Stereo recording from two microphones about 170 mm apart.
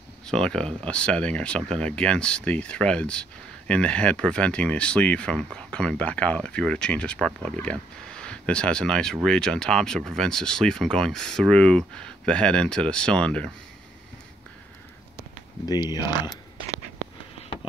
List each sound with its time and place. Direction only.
0.3 s speech: 5° left (ahead or behind)
15.6 s speech: 25° left (ahead or behind)